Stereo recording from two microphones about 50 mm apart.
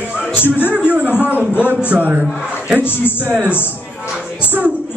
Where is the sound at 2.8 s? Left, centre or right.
Left.